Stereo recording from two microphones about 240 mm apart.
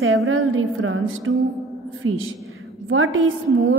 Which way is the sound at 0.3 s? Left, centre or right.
Right.